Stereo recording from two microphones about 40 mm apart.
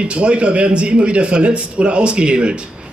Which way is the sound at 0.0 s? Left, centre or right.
Right.